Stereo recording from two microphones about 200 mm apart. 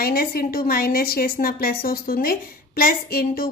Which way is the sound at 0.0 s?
50° left (ahead or behind).